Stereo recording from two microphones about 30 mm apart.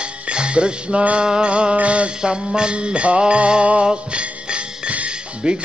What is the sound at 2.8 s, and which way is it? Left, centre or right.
Music, right.